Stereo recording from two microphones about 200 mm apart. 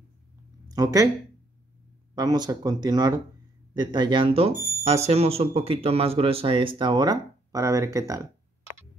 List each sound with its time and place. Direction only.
0.7 s speech: 15° right (ahead or behind)
2.1 s speech: 20° right (ahead or behind)